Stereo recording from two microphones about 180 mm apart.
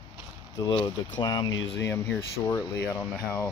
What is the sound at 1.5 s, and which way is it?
Speech, 85° left.